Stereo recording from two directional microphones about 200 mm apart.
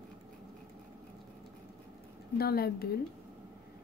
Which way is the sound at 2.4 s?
50° left (ahead or behind).